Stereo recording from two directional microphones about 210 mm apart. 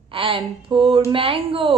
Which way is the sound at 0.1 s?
25° right (ahead or behind).